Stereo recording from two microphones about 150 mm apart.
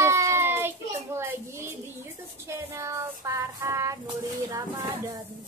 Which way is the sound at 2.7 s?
20° right (ahead or behind).